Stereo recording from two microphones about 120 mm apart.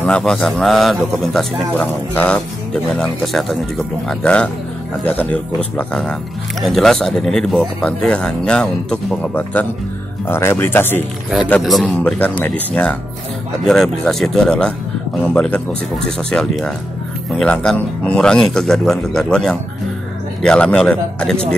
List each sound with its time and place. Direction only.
0.0 s a man's voice: 5° left (ahead or behind)
11.6 s a man's voice: centre (ahead or behind)